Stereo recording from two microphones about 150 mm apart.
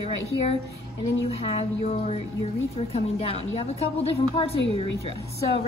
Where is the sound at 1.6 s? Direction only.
45° left (ahead or behind).